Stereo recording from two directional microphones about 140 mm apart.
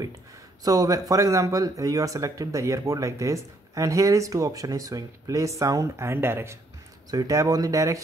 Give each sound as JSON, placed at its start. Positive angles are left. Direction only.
{"t": 0.7, "sound": "speech", "side_deg": -25}